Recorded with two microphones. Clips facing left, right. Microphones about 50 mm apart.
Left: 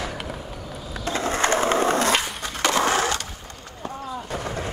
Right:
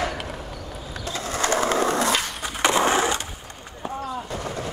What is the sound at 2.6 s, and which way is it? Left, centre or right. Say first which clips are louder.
Crushing: right 1 dB; centre.